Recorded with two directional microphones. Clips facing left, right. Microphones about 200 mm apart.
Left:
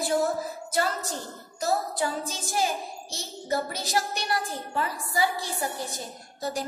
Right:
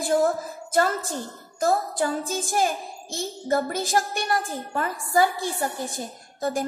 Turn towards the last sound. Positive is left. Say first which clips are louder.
# right 5 dB
turn(degrees=-50)  # may be behind; listen again after turning